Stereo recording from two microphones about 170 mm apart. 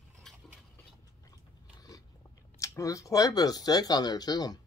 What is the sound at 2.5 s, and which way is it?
Speech, 20° left (ahead or behind).